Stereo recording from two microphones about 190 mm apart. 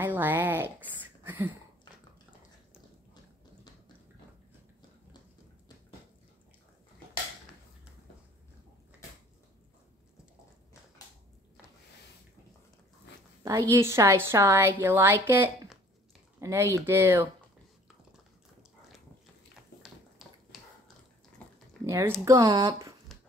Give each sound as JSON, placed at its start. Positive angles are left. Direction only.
{"t": 0.0, "sound": "a sound", "side_deg": -10}
{"t": 13.4, "sound": "a woman's voice", "side_deg": -15}
{"t": 19.8, "sound": "finger snapping", "side_deg": 0}
{"t": 21.8, "sound": "a woman's voice", "side_deg": -15}